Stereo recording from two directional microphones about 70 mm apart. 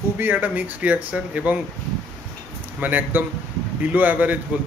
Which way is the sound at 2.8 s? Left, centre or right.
Right.